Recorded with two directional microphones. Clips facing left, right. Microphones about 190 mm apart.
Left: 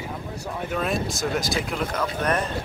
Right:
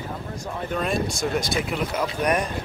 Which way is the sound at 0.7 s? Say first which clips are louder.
Right 1 dB; centre (ahead or behind).